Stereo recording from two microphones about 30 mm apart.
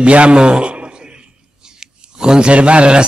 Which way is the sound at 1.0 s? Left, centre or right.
Right.